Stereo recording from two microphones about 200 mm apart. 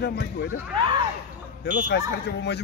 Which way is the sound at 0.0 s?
55° left (ahead or behind).